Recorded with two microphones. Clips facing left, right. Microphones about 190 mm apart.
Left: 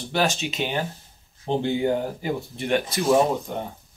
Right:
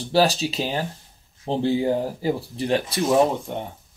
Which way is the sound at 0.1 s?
35° right (ahead or behind).